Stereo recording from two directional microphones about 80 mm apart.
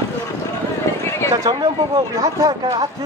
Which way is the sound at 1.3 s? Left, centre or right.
Right.